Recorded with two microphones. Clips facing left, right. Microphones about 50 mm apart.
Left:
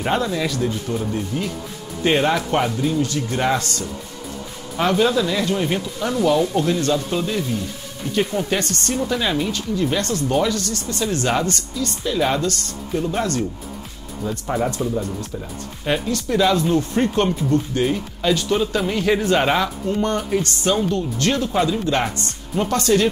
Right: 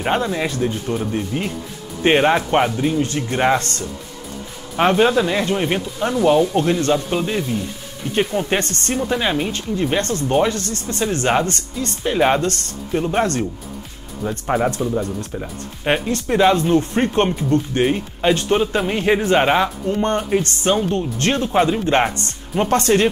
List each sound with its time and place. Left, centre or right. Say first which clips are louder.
0.0 s speech: right 1 dB; right
15.8 s speech: right 2 dB; right